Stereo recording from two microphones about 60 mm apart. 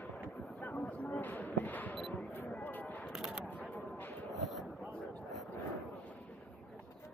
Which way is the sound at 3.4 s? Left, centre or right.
Left.